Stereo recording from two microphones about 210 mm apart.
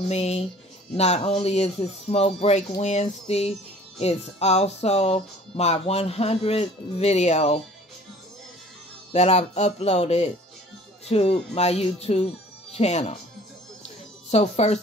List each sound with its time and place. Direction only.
0.1 s speech: 30° left (ahead or behind)
9.1 s speech: 30° left (ahead or behind)
14.3 s speech: 30° left (ahead or behind)